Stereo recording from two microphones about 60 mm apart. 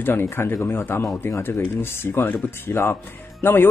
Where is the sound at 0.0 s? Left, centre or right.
Left.